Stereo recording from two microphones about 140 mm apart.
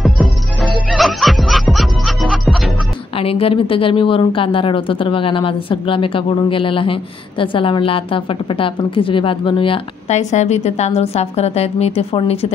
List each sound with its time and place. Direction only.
0.0 s music: centre (ahead or behind)
3.2 s speech: 40° left (ahead or behind)